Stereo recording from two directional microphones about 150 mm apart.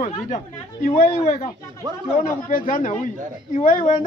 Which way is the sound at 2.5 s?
65° left (ahead or behind).